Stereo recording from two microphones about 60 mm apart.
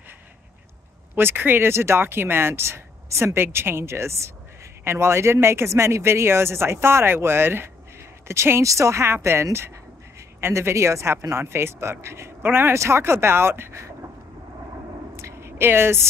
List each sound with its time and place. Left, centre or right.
1.1 s speech: right
8.6 s speech: right
12.7 s speech: right
15.1 s a sound: right